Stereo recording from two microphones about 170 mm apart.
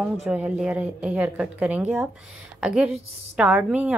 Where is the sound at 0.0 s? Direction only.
5° right (ahead or behind).